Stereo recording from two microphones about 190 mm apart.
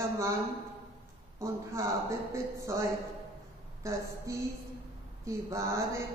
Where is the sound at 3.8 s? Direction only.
15° right (ahead or behind).